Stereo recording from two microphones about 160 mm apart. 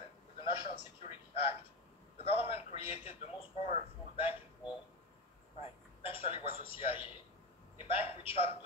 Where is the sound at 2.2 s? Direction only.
40° left (ahead or behind).